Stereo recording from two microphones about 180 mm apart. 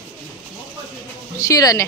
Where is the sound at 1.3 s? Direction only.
20° left (ahead or behind).